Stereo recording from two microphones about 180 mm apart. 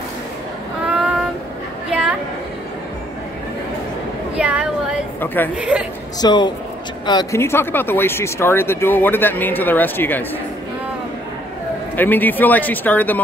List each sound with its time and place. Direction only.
0.9 s child singing: 5° right (ahead or behind)
1.9 s a sound: 5° right (ahead or behind)
4.4 s a sound: 5° right (ahead or behind)
5.2 s speech: 10° left (ahead or behind)
5.6 s a woman's voice: 5° right (ahead or behind)
6.2 s a woman's voice: 25° left (ahead or behind)
12.0 s speech: 10° left (ahead or behind)